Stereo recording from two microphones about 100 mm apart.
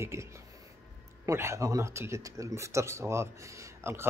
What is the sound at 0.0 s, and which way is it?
Speech, 30° right (ahead or behind).